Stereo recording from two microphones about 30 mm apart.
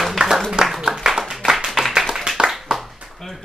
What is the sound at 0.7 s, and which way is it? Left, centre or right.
Clapping, centre.